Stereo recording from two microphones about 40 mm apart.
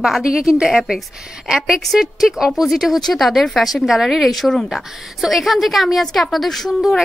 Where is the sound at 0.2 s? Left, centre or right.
Centre.